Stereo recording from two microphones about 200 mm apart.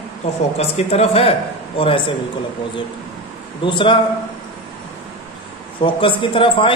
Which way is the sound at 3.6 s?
25° left (ahead or behind).